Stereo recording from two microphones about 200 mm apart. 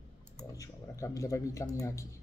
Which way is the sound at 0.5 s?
15° left (ahead or behind).